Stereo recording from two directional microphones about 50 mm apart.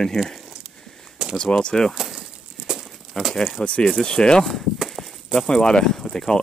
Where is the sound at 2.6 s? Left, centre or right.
Centre.